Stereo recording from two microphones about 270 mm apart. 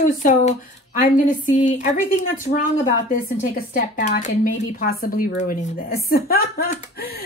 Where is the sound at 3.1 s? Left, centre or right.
Left.